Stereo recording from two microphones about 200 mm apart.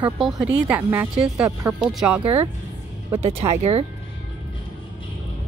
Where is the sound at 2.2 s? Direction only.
30° right (ahead or behind).